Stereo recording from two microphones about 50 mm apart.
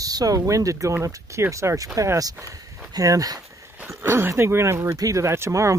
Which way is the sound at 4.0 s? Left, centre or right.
Right.